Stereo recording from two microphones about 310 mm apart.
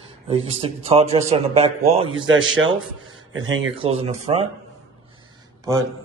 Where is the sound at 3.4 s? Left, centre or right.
Right.